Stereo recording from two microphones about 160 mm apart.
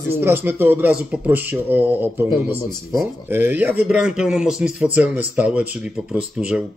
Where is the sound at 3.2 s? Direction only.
15° right (ahead or behind).